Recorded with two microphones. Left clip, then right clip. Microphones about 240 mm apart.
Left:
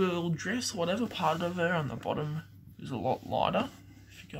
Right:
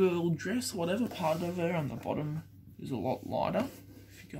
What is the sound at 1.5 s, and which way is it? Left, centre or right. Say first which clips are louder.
Speech: left 3 dB; left.